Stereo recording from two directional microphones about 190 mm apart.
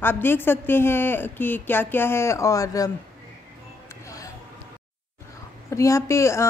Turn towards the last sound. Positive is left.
turn(degrees=15)  # may be behind; listen again after turning